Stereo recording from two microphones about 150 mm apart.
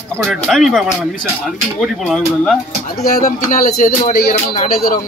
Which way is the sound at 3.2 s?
60° left (ahead or behind).